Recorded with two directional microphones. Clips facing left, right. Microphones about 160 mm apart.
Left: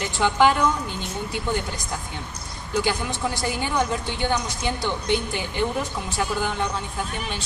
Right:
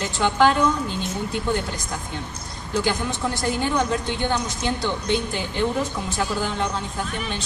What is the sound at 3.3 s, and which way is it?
A woman's voice, 15° left (ahead or behind).